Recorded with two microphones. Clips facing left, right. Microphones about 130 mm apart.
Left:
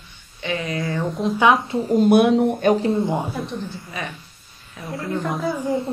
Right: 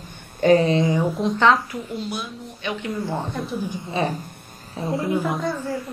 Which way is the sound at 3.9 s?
35° right (ahead or behind).